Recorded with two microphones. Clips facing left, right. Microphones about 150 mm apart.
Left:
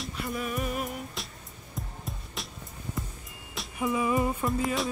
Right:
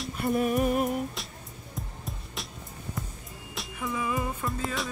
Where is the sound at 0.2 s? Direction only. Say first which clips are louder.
Right 8 dB; 50° right (ahead or behind).